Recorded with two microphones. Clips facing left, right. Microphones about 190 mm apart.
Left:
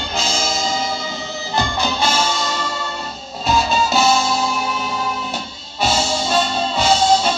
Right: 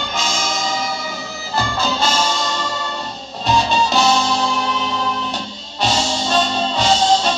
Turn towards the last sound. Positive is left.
turn(degrees=10)  # may be behind; listen again after turning